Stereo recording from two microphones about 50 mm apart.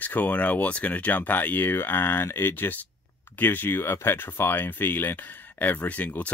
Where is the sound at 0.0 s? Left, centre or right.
Left.